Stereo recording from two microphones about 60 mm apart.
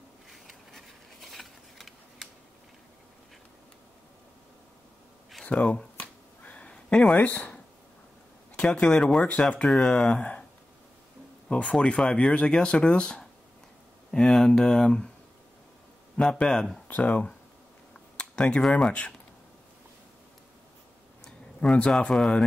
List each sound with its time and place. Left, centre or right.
0.3 s a sound: centre
5.4 s speech: centre
5.9 s finger snapping: left
7.2 s speech: left
8.5 s speech: centre
11.4 s speech: centre
16.2 s speech: centre
16.8 s speech: left
18.1 s a sound: centre
18.9 s speech: left
21.6 s speech: centre
22.1 s speech: centre